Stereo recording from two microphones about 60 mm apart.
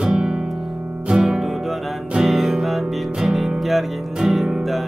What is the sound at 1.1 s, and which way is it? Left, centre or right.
Music, centre.